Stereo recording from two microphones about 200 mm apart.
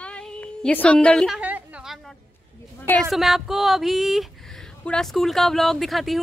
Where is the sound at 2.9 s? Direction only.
Centre (ahead or behind).